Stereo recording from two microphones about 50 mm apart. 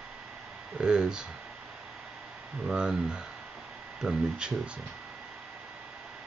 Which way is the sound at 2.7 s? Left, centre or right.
Centre.